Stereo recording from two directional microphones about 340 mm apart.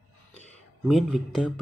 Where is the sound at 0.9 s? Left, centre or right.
Centre.